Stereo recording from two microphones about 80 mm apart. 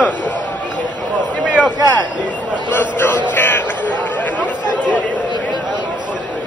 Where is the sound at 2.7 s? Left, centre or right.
Left.